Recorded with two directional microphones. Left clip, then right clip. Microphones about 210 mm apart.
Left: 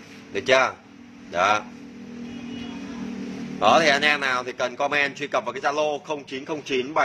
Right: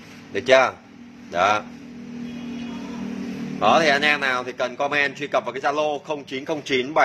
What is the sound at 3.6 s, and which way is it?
A man's voice, centre (ahead or behind).